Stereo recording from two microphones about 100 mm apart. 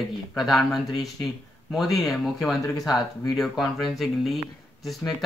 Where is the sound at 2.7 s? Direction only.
35° left (ahead or behind).